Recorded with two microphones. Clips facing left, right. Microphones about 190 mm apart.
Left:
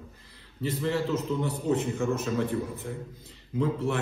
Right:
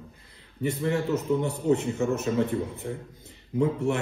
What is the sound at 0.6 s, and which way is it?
A man's voice, 15° right (ahead or behind).